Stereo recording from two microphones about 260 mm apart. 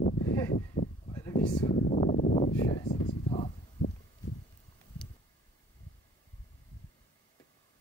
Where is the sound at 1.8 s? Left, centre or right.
Left.